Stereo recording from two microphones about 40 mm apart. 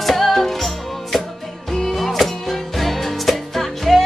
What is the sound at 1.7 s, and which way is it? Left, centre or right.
Music, centre.